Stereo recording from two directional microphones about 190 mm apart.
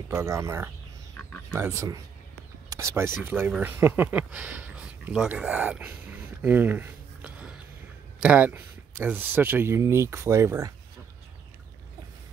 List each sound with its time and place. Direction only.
0.1 s speech: 15° right (ahead or behind)
6.4 s a sound: 10° right (ahead or behind)
8.2 s speech: 10° right (ahead or behind)